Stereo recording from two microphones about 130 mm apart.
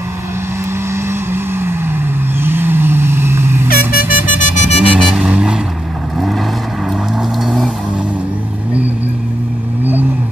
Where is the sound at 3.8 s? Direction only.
90° left; by 4.8 s 65° left (ahead or behind).